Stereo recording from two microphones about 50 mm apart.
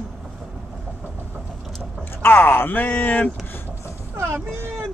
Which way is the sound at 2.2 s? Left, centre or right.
Left.